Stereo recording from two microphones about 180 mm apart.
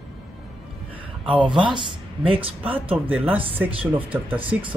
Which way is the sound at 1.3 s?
30° right (ahead or behind).